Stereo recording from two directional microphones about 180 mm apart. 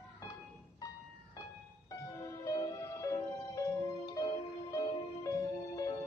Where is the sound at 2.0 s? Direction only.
15° left (ahead or behind).